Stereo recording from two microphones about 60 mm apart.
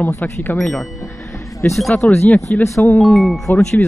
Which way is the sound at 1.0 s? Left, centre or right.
Left.